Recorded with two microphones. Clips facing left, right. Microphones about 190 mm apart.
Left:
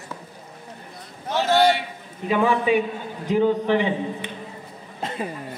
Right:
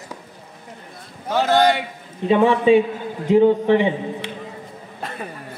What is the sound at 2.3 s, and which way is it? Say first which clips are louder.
A man's voice: right 6 dB; 25° right (ahead or behind).